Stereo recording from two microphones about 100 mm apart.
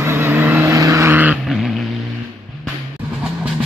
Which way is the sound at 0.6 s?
30° right (ahead or behind).